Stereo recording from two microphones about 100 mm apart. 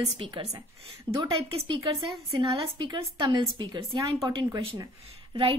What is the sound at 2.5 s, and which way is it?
A woman's voice, 55° right (ahead or behind).